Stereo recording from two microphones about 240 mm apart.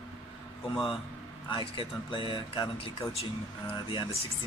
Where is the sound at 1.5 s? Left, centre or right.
Left.